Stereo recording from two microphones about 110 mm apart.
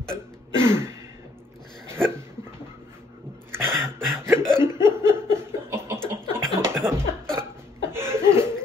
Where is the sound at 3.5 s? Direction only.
20° right (ahead or behind).